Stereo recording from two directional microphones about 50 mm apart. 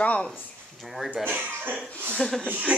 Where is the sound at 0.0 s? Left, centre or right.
Left.